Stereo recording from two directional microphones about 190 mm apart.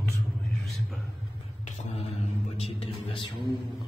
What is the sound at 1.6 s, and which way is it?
Music, 30° left (ahead or behind).